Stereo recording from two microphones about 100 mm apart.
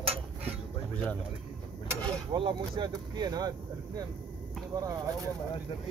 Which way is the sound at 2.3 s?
55° right (ahead or behind).